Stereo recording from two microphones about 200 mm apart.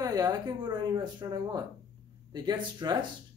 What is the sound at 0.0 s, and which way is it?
Speech, 20° right (ahead or behind).